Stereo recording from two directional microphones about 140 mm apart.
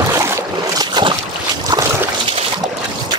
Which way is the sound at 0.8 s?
35° right (ahead or behind).